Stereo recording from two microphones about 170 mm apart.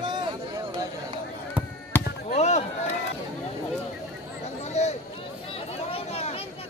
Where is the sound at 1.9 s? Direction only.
10° left (ahead or behind).